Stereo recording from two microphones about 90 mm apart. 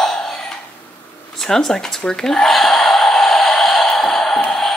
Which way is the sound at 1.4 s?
5° left (ahead or behind).